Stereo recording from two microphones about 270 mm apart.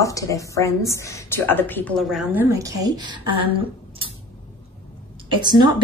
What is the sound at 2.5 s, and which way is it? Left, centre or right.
Speech, centre.